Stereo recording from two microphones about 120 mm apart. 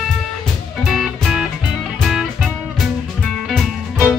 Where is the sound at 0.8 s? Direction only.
Centre (ahead or behind).